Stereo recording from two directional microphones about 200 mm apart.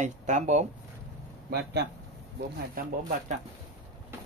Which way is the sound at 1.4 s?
50° right (ahead or behind).